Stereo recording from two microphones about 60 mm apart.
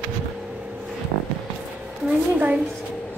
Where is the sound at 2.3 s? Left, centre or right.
Right.